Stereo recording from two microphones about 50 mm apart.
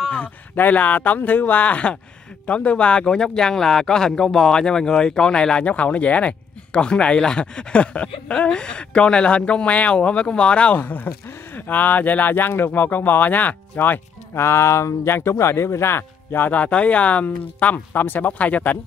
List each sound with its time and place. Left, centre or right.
0.1 s speech: left
3.1 s speech: centre
10.8 s speech: left
14.3 s speech: left
15.0 s speech: left
16.5 s speech: left